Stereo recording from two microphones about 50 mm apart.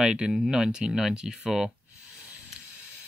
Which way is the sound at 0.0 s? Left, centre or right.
Centre.